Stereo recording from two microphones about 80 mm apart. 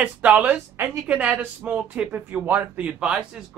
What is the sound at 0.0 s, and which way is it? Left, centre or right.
Speech, right.